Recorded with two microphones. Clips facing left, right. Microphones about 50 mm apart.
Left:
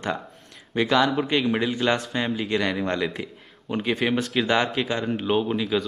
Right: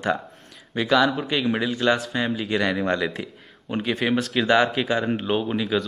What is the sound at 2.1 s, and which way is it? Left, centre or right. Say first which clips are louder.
Speech: right 1 dB; centre.